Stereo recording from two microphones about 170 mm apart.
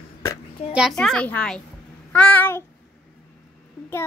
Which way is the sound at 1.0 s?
5° left (ahead or behind).